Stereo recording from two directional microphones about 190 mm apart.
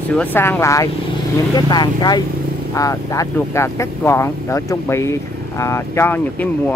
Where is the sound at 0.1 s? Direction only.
10° left (ahead or behind).